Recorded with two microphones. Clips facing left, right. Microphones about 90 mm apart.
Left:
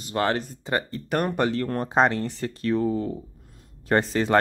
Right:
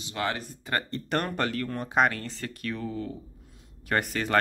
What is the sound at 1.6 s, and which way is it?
Speech, 40° left (ahead or behind).